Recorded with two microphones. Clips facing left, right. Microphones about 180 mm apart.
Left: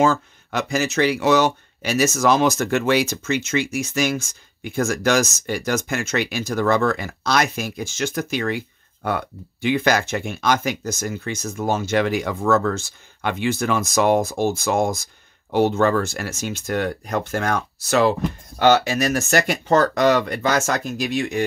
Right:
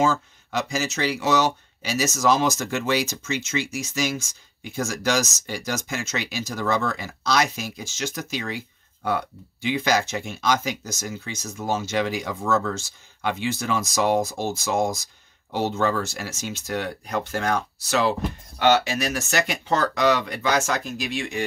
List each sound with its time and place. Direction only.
0.0 s speech: 60° left (ahead or behind)